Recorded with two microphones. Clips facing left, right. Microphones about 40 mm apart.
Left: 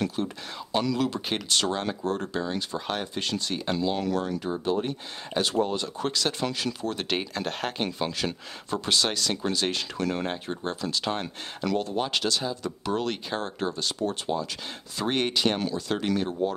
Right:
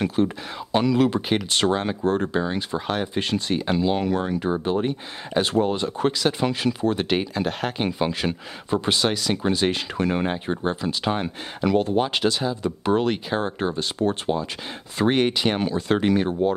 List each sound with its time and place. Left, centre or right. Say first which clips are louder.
0.0 s speech: right 7 dB; right
0.9 s speech: right 7 dB; right; by 7.9 s centre
8.0 s speech: right 5 dB; centre; by 14.3 s right
15.1 s speech: right 4 dB; centre